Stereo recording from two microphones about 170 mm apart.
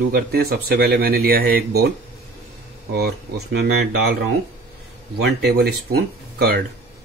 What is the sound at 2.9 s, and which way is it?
Speech, 70° right (ahead or behind).